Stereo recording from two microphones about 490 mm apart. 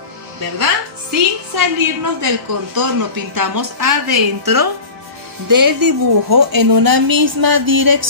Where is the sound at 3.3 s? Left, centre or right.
Right.